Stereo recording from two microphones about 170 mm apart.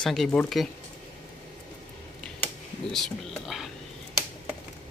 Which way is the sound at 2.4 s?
Centre (ahead or behind).